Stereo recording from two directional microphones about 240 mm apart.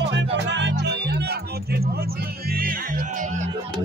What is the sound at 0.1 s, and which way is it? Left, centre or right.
Music, right.